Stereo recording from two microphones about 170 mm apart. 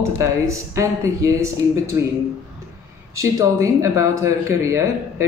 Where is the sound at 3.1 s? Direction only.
20° right (ahead or behind).